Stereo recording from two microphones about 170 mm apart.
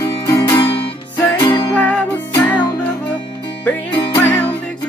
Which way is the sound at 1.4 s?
30° left (ahead or behind).